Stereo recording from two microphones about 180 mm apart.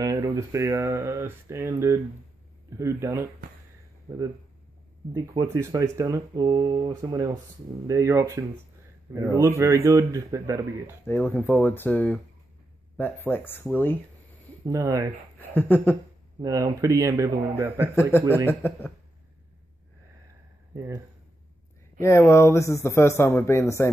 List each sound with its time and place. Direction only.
0.0 s speech: 20° right (ahead or behind)
5.4 s speech: 15° right (ahead or behind)
11.1 s speech: 10° left (ahead or behind)
14.7 s speech: 15° right (ahead or behind)
15.5 s speech: 10° left (ahead or behind)
16.3 s speech: 20° right (ahead or behind)
18.3 s speech: 10° left (ahead or behind)
20.7 s speech: 15° right (ahead or behind)
22.0 s speech: 15° left (ahead or behind)